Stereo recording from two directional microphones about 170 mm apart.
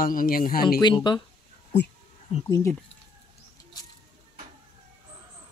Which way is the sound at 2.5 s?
15° left (ahead or behind).